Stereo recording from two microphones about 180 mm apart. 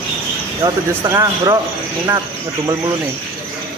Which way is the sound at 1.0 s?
15° right (ahead or behind).